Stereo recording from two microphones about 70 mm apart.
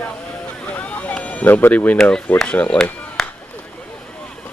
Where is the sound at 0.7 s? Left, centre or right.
Left.